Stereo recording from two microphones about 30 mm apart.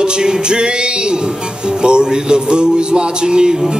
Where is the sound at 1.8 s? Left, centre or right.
Right.